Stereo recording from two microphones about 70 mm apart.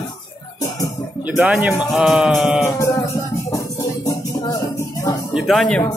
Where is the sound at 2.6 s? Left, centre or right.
Left.